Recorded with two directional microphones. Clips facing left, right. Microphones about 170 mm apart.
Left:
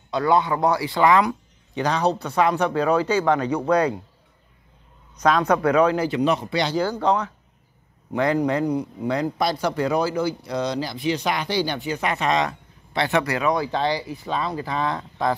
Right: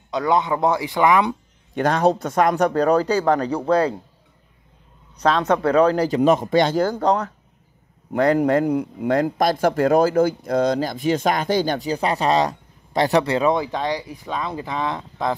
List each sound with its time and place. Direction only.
0.1 s speech: 15° right (ahead or behind)
1.8 s speech: 50° right (ahead or behind); by 3.9 s 30° right (ahead or behind)
5.1 s a man's voice: 30° right (ahead or behind)
13.2 s speech: 25° right (ahead or behind)
14.0 s speech: 10° right (ahead or behind)